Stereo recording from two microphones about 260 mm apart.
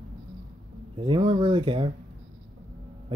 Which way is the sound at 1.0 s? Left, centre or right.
Centre.